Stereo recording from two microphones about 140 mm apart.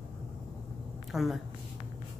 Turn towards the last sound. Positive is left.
turn(degrees=0)  # may be behind; listen again after turning